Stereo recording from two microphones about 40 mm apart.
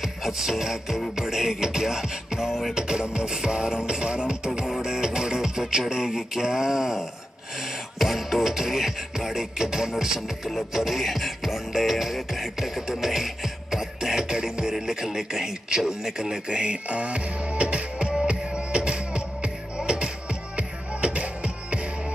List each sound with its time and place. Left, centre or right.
0.0 s music: centre; by 21.8 s right